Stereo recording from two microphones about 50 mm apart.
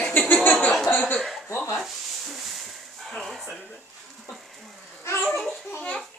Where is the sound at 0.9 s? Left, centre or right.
Left.